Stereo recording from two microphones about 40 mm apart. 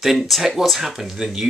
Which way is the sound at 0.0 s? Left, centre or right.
Centre.